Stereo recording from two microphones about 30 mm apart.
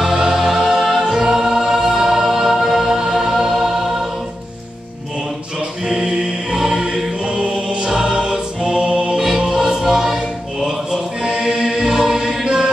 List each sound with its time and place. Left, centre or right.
0.0 s music: centre
5.9 s music: right
7.8 s music: right
9.1 s music: centre
9.9 s choir: centre
10.6 s choir: right